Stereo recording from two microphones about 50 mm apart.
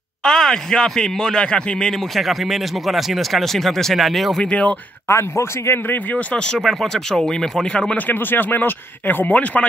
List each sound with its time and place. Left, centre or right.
0.2 s speech: centre
2.1 s speech: centre
4.4 s speech: left
5.0 s a man's voice: left
6.1 s speech: centre
6.6 s speech: centre
8.1 s speech: left
9.3 s speech: left